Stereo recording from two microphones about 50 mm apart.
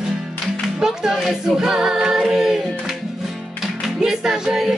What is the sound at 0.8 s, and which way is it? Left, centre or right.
Music, centre.